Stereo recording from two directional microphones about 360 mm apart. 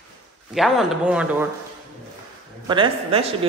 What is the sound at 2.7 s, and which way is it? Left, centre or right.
Speech, centre.